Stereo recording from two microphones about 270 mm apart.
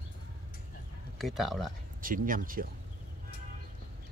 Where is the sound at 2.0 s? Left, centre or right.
Right.